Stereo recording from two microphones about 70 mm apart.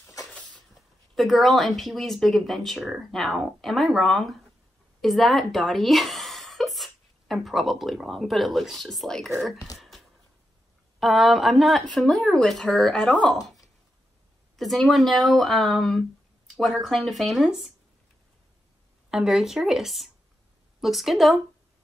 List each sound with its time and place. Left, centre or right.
0.3 s vehicle: centre
0.6 s speech: centre
9.8 s a sound: centre
11.0 s speech: centre
14.6 s speech: centre
19.0 s speech: centre